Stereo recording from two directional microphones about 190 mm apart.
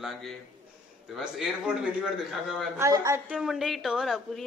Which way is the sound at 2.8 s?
15° right (ahead or behind).